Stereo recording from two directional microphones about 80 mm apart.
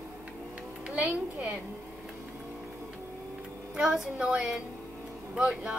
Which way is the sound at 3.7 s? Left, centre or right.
Centre.